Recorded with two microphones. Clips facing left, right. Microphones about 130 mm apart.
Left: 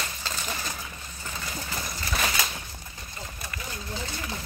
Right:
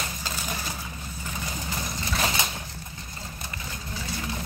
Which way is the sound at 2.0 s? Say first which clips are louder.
Right 1 dB; 25° right (ahead or behind).